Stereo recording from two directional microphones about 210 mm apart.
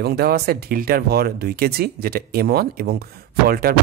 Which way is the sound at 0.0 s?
50° right (ahead or behind).